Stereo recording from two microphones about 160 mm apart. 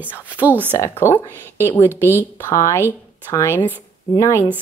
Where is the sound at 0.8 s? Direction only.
15° left (ahead or behind).